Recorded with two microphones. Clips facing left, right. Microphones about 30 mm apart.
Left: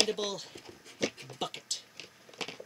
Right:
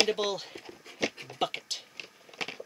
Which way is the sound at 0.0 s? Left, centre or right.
Centre.